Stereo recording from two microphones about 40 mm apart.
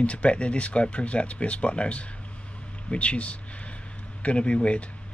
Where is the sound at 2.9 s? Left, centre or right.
Left.